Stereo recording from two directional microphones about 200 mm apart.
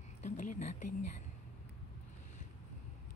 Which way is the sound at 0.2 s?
35° left (ahead or behind).